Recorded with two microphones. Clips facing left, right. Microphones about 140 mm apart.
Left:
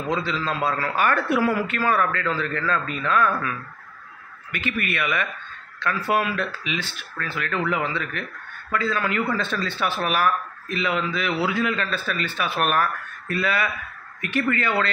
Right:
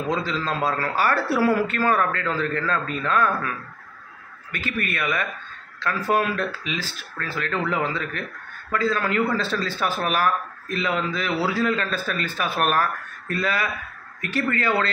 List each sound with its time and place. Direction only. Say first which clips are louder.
0.1 s speech: left 1 dB; 40° right (ahead or behind)
4.5 s speech: left 1 dB; 40° right (ahead or behind)